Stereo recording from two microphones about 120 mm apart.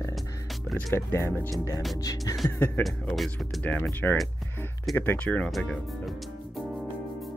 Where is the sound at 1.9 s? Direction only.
30° left (ahead or behind).